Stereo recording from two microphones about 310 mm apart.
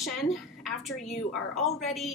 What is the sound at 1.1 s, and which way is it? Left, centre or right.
Speech, left.